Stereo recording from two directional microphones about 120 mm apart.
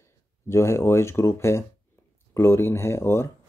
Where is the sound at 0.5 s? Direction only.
20° left (ahead or behind).